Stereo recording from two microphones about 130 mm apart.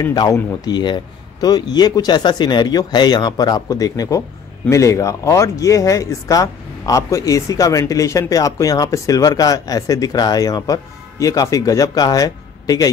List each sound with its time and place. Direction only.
0.0 s speech: 30° left (ahead or behind)